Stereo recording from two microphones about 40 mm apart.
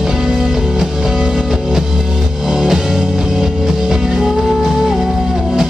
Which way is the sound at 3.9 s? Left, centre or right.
Centre.